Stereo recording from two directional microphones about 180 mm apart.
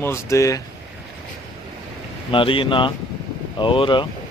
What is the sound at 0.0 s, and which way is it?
Speech, 15° left (ahead or behind).